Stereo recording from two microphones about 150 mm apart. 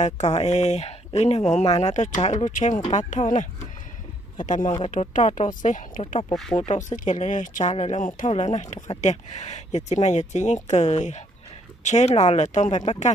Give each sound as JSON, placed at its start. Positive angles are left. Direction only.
{"t": 0.0, "sound": "speech", "side_deg": 45}